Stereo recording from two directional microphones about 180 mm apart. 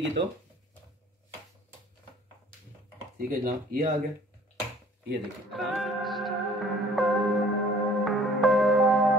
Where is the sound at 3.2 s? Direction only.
50° right (ahead or behind).